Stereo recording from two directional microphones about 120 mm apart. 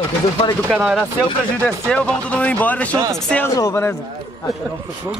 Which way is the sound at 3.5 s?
25° left (ahead or behind).